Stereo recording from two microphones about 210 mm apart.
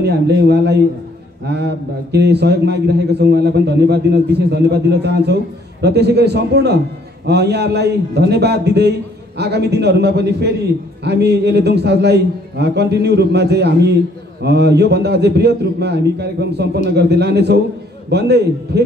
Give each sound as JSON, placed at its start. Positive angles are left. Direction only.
{"t": 0.0, "sound": "a man's voice", "side_deg": -50}